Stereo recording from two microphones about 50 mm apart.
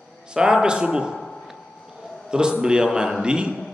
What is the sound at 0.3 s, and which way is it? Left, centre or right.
Speech, centre.